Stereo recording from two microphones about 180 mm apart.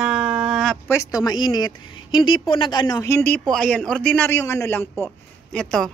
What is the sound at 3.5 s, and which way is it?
A woman's voice, 5° left (ahead or behind).